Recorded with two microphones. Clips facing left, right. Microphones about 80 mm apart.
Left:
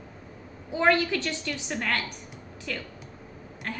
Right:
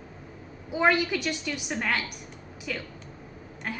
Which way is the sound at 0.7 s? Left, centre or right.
Centre.